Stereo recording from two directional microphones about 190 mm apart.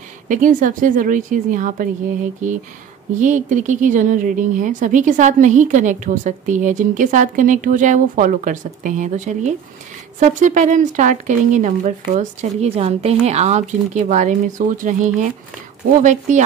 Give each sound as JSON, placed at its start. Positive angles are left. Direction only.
{"t": 0.3, "sound": "a woman's voice", "side_deg": -45}